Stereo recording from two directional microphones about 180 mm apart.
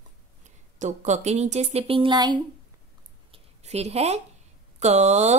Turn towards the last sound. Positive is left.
turn(degrees=-40)  # may be behind; listen again after turning